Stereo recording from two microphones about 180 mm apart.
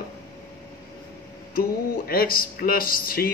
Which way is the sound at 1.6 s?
55° left (ahead or behind).